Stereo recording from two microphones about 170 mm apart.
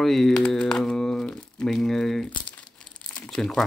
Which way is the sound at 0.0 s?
Centre (ahead or behind).